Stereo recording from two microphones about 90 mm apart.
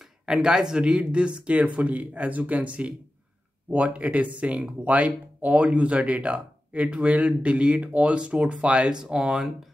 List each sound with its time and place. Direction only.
0.3 s speech: 5° right (ahead or behind)